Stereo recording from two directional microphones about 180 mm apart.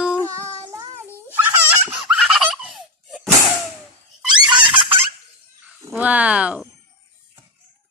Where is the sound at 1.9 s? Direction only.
Centre (ahead or behind).